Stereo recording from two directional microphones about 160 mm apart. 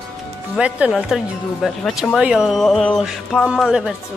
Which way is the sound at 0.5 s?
5° right (ahead or behind).